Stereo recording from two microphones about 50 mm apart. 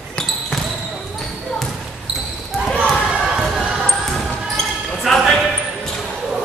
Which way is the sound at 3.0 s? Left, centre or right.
Centre.